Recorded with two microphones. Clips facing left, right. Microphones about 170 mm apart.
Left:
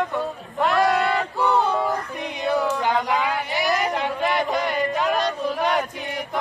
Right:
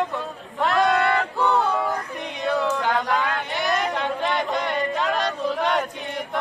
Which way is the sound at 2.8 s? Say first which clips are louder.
Left 1 dB; 15° left (ahead or behind).